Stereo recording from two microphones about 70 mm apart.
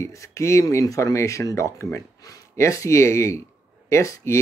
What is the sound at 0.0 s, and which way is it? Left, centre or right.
Speech, left.